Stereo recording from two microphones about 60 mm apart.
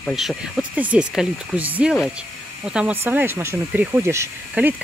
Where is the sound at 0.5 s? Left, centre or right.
Right.